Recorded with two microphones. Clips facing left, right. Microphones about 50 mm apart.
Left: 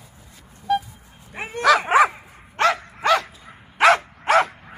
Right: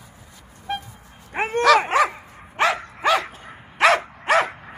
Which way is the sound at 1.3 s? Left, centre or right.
Right.